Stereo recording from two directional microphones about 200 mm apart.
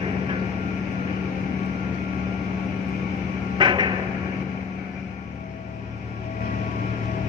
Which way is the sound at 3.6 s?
25° right (ahead or behind).